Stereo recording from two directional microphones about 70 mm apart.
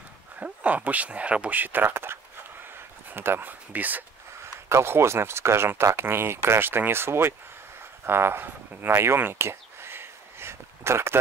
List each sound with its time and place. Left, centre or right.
0.4 s speech: right
4.6 s speech: right